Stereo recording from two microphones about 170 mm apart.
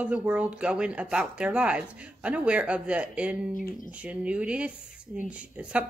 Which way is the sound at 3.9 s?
5° right (ahead or behind).